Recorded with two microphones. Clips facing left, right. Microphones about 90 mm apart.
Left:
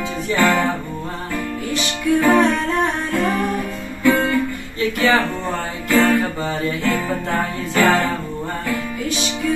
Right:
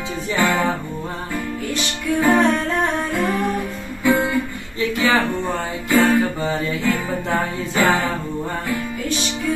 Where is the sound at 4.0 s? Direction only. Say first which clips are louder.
Left 2 dB; 15° right (ahead or behind).